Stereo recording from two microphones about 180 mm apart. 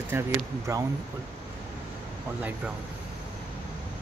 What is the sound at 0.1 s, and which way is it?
Speech, 15° right (ahead or behind).